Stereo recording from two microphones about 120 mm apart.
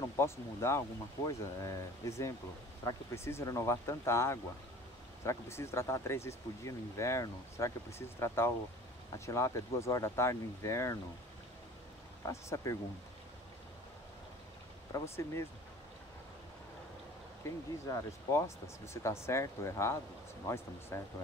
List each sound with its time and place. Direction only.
0.1 s speech: 20° left (ahead or behind)
12.3 s speech: 25° left (ahead or behind)
14.9 s speech: 20° left (ahead or behind)
17.4 s speech: 25° left (ahead or behind)